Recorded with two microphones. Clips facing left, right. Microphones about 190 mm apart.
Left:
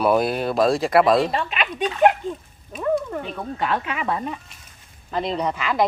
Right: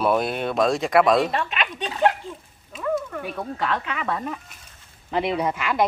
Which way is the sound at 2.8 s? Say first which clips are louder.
Left 3 dB; 30° left (ahead or behind).